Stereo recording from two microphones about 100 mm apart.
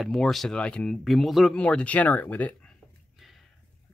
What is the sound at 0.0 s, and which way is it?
Speech, centre (ahead or behind).